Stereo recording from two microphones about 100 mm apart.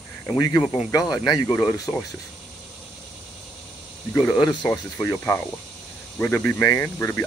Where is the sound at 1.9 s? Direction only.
60° left (ahead or behind).